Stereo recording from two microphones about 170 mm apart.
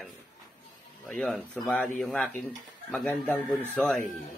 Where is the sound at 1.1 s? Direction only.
Centre (ahead or behind).